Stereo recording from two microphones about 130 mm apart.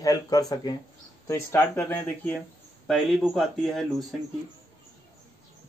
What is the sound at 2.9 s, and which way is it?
Speech, centre (ahead or behind).